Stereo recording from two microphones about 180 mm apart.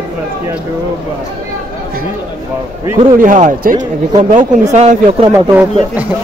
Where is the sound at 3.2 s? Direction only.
45° right (ahead or behind).